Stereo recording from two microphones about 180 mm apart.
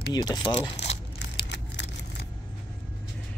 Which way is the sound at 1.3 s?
70° left (ahead or behind).